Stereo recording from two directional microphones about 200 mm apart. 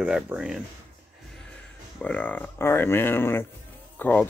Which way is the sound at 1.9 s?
5° left (ahead or behind).